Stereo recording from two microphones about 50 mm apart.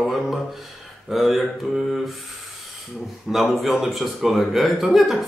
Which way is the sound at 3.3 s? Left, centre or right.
Centre.